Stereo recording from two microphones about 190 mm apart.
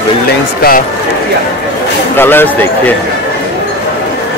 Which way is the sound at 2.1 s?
10° left (ahead or behind).